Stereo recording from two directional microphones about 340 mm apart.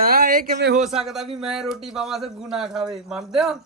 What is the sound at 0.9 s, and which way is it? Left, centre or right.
Speech, centre.